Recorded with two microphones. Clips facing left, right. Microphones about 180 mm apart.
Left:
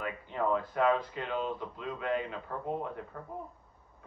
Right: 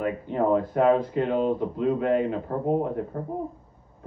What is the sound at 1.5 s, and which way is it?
Speech, 30° right (ahead or behind).